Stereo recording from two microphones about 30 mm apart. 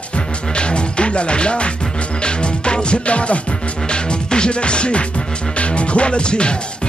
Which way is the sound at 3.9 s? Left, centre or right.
Left.